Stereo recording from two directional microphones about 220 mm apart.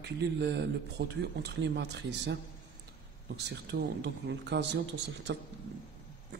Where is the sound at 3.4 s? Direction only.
55° right (ahead or behind).